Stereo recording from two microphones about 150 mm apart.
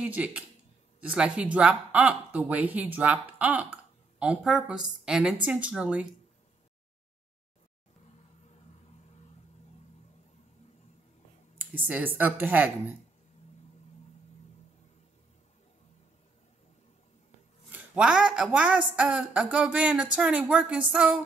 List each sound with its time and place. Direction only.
0.0 s speech: 10° right (ahead or behind)
11.7 s speech: 10° right (ahead or behind)
17.6 s speech: 10° right (ahead or behind)